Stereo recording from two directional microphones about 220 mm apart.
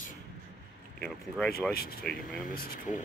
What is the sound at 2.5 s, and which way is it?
Speech, 45° left (ahead or behind).